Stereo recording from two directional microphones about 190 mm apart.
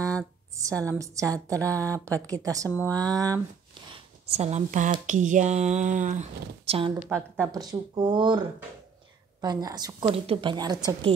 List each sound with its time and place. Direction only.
0.6 s a woman's voice: 15° right (ahead or behind)
3.9 s speech: 35° right (ahead or behind)
7.1 s speech: 5° right (ahead or behind)
7.5 s a woman's voice: 20° right (ahead or behind)